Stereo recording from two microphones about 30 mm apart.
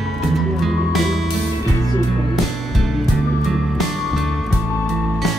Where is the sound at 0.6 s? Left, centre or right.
Centre.